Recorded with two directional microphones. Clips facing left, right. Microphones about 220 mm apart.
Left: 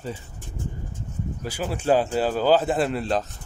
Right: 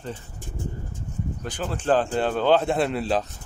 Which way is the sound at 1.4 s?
10° left (ahead or behind).